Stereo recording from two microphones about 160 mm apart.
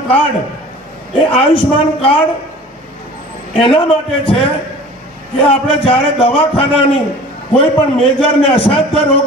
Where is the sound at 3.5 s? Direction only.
35° left (ahead or behind).